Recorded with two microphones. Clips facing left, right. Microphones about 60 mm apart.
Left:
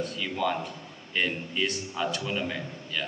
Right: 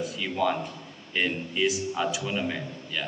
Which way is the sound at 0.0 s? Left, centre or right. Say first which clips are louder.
Right 2 dB; centre.